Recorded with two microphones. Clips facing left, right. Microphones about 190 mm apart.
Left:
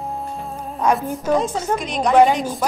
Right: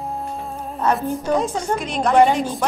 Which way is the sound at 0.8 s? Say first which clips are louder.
Left 2 dB; 10° left (ahead or behind).